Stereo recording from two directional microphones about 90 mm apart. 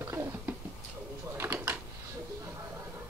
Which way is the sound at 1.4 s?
20° right (ahead or behind).